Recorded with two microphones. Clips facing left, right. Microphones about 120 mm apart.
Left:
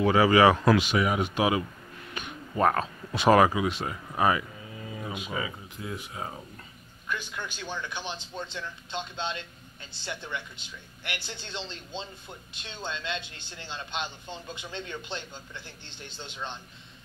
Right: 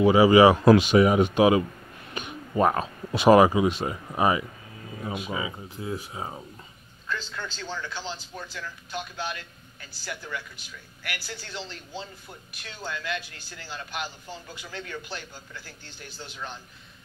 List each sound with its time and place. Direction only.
0.0 s speech: 15° right (ahead or behind)
5.8 s speech: 30° right (ahead or behind)
7.1 s speech: 15° left (ahead or behind)